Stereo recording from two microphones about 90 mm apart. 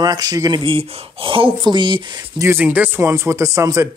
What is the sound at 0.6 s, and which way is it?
Speech, 75° right (ahead or behind).